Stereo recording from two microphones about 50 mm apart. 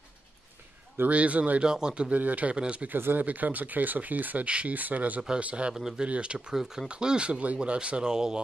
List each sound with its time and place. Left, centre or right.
1.0 s speech: right
1.6 s a man's voice: centre
2.1 s speech: right
2.9 s speech: right
5.8 s a man's voice: centre
6.0 s speech: right
6.5 s a man's voice: centre
6.9 s speech: centre